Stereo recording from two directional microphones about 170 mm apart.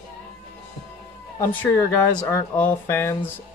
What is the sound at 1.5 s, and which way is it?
Speech, 10° left (ahead or behind).